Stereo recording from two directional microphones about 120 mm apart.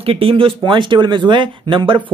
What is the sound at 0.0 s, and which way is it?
Speech, 50° right (ahead or behind).